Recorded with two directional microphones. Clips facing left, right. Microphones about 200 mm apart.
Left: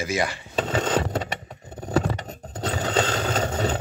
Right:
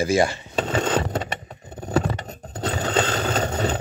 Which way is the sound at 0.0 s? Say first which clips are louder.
Right 6 dB; 30° right (ahead or behind).